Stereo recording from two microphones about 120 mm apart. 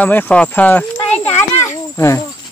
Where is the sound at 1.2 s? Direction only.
65° left (ahead or behind).